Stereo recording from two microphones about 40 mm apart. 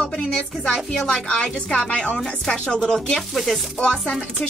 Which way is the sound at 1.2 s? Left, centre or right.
Left.